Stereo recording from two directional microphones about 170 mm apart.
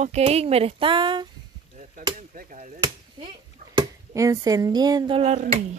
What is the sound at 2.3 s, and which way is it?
Speech, 50° right (ahead or behind).